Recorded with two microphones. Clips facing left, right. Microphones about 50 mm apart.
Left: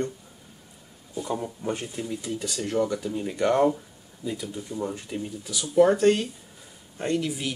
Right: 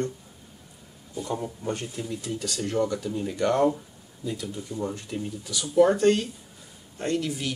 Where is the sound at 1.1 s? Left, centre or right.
Centre.